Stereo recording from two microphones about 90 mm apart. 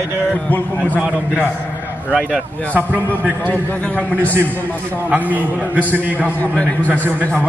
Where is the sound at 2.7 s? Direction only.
20° right (ahead or behind).